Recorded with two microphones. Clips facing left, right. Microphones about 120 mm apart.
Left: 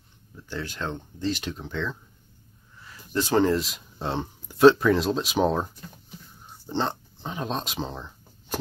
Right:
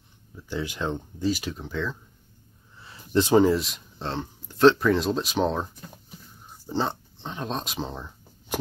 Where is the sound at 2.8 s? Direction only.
25° right (ahead or behind).